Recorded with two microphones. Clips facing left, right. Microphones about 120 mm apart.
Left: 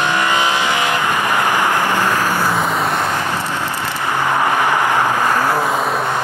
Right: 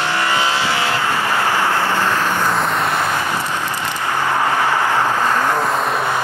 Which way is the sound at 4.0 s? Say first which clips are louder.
Left 2 dB; 15° left (ahead or behind).